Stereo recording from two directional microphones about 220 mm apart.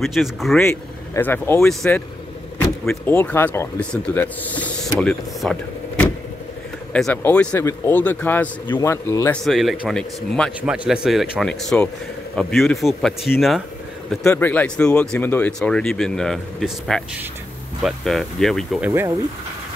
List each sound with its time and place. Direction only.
0.0 s speech: centre (ahead or behind)
0.7 s speech: 10° left (ahead or behind)
9.4 s speech: centre (ahead or behind)
18.9 s speech: 10° right (ahead or behind)